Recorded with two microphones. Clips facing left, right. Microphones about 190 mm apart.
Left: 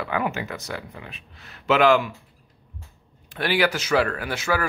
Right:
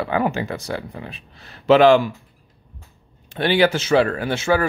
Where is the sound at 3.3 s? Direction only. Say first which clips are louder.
Right 5 dB; 25° right (ahead or behind).